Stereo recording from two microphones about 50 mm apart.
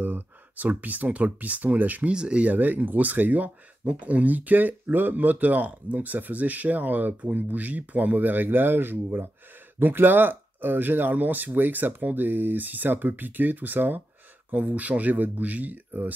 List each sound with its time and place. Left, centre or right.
0.0 s speech: right
2.1 s speech: centre
2.5 s speech: right